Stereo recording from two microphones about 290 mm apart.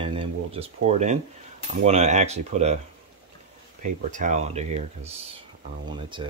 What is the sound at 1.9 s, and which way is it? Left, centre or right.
Speech, right.